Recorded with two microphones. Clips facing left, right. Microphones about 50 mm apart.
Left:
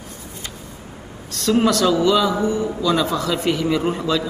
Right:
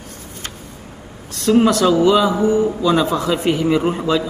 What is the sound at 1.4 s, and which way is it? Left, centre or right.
A man's voice, centre.